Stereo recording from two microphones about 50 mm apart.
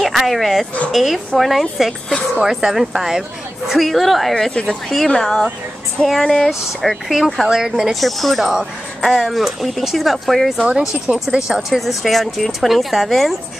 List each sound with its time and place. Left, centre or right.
0.0 s speech: centre
2.4 s speech: centre
4.5 s speech: left
4.8 s speech: centre
6.8 s speech: centre
7.4 s speech: centre
7.9 s speech: centre
10.8 s speech: centre